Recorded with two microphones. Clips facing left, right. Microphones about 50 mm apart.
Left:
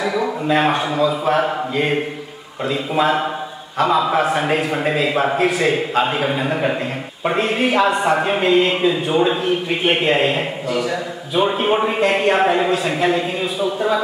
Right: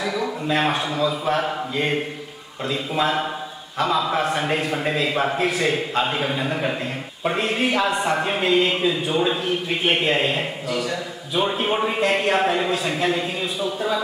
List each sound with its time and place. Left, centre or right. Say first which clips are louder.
0.0 s a man's voice: left 5 dB; centre